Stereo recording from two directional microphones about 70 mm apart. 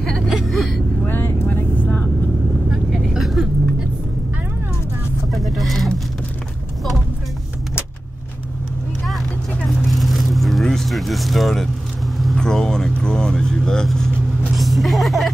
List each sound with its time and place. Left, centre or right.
0.3 s whimper: centre
1.0 s vehicle: left
2.7 s vehicle: centre
5.3 s a sound: centre
9.7 s vehicle: centre